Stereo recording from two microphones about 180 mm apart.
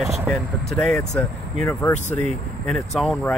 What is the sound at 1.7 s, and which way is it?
Speech, 15° left (ahead or behind).